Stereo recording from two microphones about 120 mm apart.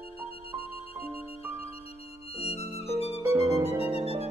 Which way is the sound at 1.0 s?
55° left (ahead or behind).